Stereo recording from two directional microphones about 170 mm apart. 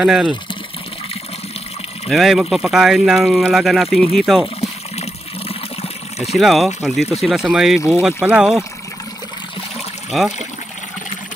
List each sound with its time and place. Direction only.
0.0 s speech: centre (ahead or behind)
2.0 s speech: centre (ahead or behind)
5.5 s water: 35° left (ahead or behind)
6.3 s speech: centre (ahead or behind)